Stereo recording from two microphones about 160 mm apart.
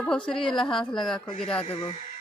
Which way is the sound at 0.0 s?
5° left (ahead or behind).